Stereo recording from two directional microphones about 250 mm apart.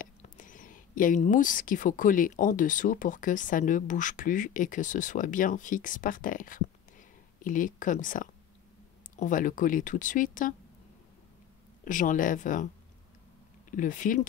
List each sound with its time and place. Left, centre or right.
0.0 s speech: left
11.8 s speech: left
13.7 s speech: left